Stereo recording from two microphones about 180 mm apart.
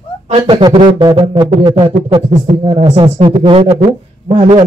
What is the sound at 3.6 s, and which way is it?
Speech, 45° right (ahead or behind).